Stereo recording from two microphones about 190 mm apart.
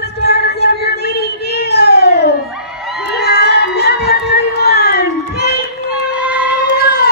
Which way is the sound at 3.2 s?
55° left (ahead or behind).